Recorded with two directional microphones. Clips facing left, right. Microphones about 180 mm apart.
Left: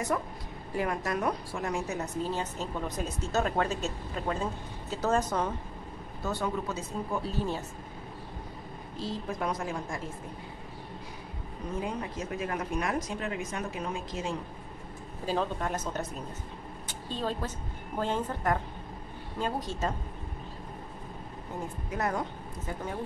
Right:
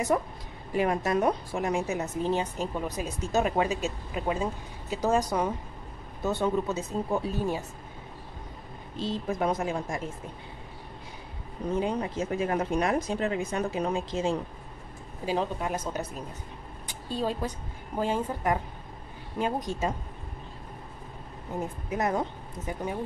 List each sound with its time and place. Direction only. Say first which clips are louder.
0.1 s a woman's voice: right 4 dB; 25° right (ahead or behind)
6.2 s speech: right 5 dB; 20° right (ahead or behind)
9.0 s speech: right 5 dB; 25° right (ahead or behind)
11.8 s speech: right 4 dB; 25° right (ahead or behind)
15.2 s a woman's voice: right 2 dB; 10° right (ahead or behind)
21.9 s a woman's voice: right 3 dB; 20° right (ahead or behind)